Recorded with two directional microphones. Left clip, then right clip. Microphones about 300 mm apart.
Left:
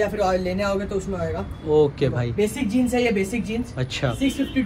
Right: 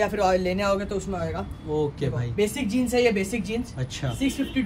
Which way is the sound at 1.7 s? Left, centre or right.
Centre.